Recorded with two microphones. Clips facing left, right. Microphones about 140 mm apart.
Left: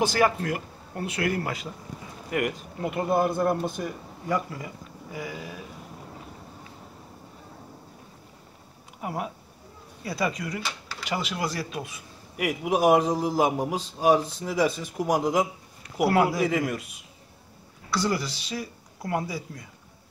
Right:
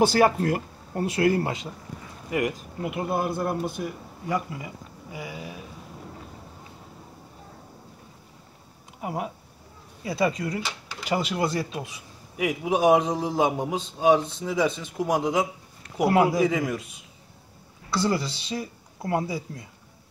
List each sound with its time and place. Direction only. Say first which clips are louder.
0.1 s speech: right 3 dB; 35° right (ahead or behind)
2.3 s speech: right 1 dB; 5° right (ahead or behind)
9.0 s speech: right 1 dB; 20° right (ahead or behind)
12.4 s a man's voice: right 1 dB; centre (ahead or behind)
16.1 s speech: right 2 dB; 20° right (ahead or behind)
17.9 s speech: right 2 dB; 25° right (ahead or behind)